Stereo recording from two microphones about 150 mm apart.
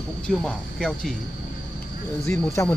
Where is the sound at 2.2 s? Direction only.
20° left (ahead or behind).